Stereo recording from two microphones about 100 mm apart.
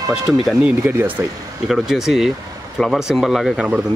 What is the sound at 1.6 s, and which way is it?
Speech, 5° right (ahead or behind).